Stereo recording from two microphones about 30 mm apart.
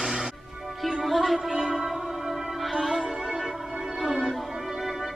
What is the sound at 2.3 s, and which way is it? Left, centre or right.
Music, centre.